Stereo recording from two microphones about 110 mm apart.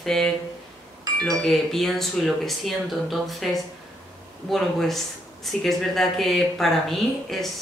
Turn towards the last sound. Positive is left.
turn(degrees=0)  # may be behind; listen again after turning